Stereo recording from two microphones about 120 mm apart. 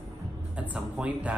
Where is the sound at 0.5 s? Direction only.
10° right (ahead or behind).